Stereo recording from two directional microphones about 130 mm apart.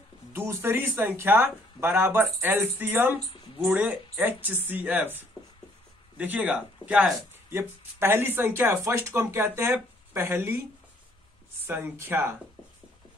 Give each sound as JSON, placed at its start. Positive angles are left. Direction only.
{"t": 0.3, "sound": "speech", "side_deg": -15}
{"t": 11.6, "sound": "speech", "side_deg": -15}